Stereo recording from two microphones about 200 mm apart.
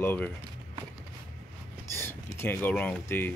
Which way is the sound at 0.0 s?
10° left (ahead or behind).